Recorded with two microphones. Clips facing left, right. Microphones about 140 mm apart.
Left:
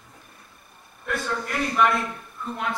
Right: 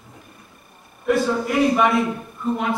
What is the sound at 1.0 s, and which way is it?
Speech, 5° right (ahead or behind).